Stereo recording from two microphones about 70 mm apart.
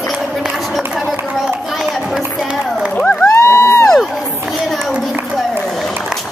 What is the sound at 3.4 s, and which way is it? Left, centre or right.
Crowd, left.